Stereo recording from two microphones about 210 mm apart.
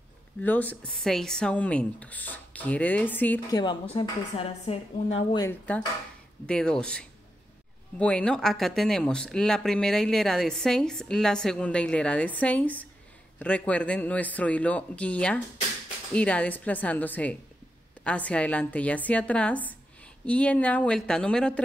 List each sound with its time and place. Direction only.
0.4 s speech: 10° left (ahead or behind)
3.5 s a woman's voice: 20° left (ahead or behind)
5.4 s speech: 10° left (ahead or behind)